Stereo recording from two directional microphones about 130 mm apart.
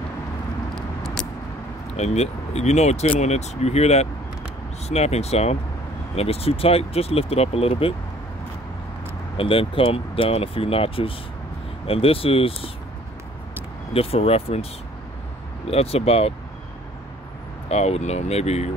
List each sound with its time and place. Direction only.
0.7 s vehicle: 5° left (ahead or behind)
2.0 s speech: 60° left (ahead or behind)
9.4 s speech: 45° left (ahead or behind)
13.9 s speech: 50° left (ahead or behind)
17.6 s speech: 55° left (ahead or behind)